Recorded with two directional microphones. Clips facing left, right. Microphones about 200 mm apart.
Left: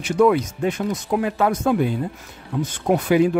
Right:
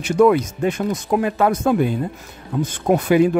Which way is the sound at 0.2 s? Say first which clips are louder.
Right 2 dB; 45° right (ahead or behind).